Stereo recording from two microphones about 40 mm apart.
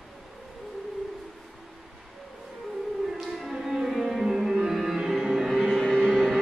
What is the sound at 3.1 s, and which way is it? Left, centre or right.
Music, centre.